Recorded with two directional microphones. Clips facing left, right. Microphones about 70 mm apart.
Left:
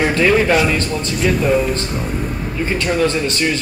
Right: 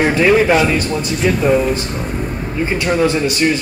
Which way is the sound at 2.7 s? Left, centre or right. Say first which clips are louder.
Right 2 dB; centre.